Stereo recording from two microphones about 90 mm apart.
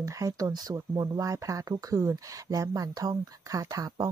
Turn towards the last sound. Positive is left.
turn(degrees=-45)  # may be behind; listen again after turning